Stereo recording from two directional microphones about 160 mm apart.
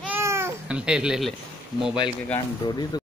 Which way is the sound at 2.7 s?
25° left (ahead or behind).